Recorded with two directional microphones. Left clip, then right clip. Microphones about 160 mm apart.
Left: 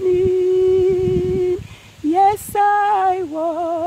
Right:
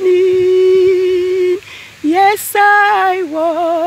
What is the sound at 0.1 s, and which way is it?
Humming, centre (ahead or behind).